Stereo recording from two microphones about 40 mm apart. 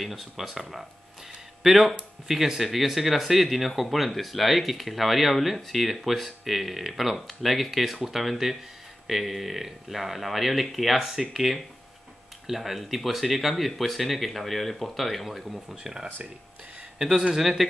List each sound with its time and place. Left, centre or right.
0.0 s speech: centre
15.7 s speech: centre